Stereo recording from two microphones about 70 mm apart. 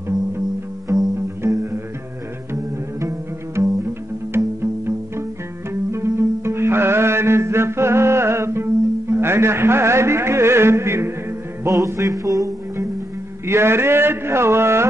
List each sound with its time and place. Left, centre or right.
0.8 s music: right
1.5 s music: right
2.5 s double bass: right
4.6 s music: right
11.6 s music: right
13.5 s a man's voice: right